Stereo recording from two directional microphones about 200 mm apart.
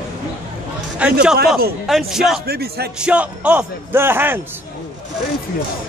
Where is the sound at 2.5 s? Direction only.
50° right (ahead or behind).